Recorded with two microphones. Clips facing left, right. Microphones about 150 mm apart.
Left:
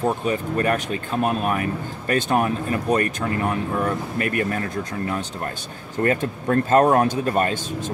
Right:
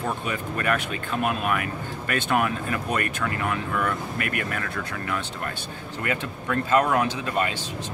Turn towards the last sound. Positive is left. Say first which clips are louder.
# left 4 dB
turn(degrees=45)  # may be behind; listen again after turning